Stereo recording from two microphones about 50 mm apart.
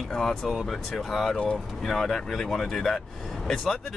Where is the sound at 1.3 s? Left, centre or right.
Left.